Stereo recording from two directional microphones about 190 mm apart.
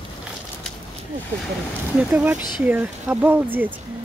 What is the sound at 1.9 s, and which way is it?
Speech, 5° right (ahead or behind).